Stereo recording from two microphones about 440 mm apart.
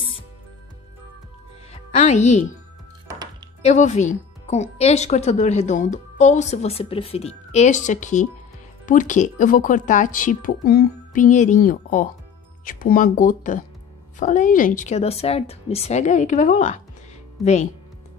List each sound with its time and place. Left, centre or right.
1.7 s speech: centre
3.6 s speech: centre